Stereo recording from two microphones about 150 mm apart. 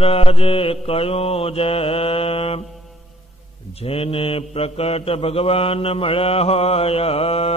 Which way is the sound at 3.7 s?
40° left (ahead or behind).